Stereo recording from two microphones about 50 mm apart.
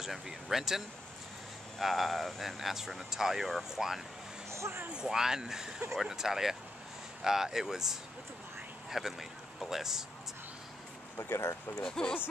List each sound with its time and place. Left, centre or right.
0.0 s speech: centre
4.5 s vehicle: right
4.9 s speech: centre
11.1 s speech: left
11.8 s speech: centre